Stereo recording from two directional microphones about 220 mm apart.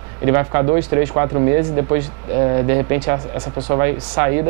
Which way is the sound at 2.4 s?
20° right (ahead or behind).